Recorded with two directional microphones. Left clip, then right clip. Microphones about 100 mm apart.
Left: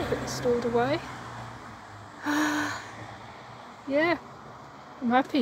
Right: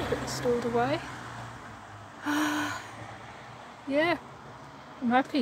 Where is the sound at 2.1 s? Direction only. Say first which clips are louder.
Left 2 dB; 20° left (ahead or behind).